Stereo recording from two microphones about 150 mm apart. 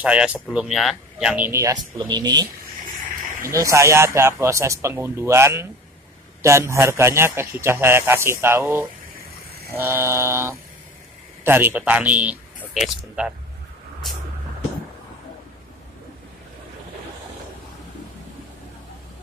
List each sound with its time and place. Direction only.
0.0 s a man's voice: 5° right (ahead or behind)
2.0 s speech: 30° right (ahead or behind)
3.4 s a man's voice: 20° right (ahead or behind)